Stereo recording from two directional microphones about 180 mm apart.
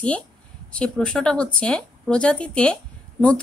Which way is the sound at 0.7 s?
5° left (ahead or behind).